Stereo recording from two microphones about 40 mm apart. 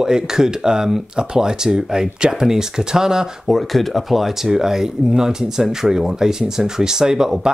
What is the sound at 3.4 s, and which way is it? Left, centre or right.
Speech, centre.